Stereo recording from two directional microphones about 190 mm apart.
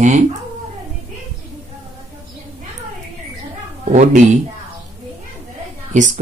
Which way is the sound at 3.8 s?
40° right (ahead or behind).